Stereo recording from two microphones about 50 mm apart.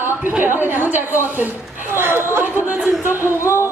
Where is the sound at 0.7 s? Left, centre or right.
Right.